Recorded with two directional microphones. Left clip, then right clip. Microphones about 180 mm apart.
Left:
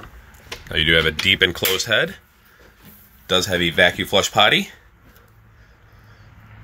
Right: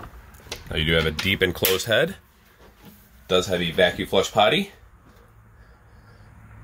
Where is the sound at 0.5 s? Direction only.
10° right (ahead or behind); by 2.2 s 25° right (ahead or behind).